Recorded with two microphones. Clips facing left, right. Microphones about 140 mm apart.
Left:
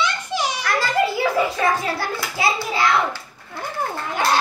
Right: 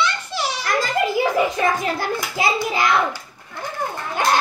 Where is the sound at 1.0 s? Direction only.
20° right (ahead or behind).